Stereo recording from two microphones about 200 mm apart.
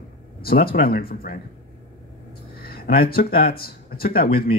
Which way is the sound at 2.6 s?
50° left (ahead or behind).